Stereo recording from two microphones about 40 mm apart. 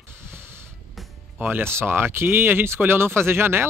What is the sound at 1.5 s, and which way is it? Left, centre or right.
Speech, right.